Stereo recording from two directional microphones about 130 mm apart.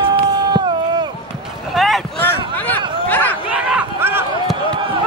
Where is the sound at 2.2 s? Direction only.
15° left (ahead or behind).